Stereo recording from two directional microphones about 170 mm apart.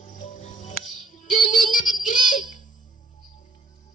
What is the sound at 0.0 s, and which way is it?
Music, 50° left (ahead or behind).